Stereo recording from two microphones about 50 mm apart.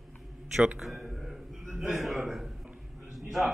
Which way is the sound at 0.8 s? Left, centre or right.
Centre.